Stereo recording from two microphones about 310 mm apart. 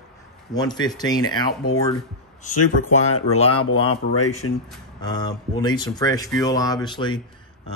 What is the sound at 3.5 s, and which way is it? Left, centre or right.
Speech, left.